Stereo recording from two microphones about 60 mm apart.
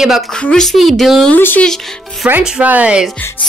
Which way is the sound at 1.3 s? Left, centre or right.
Left.